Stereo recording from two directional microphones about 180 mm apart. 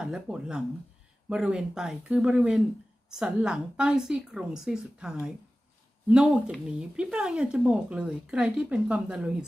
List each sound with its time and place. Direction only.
0.0 s speech: 5° right (ahead or behind)